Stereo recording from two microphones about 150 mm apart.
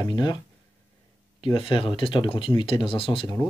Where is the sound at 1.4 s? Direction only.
35° left (ahead or behind).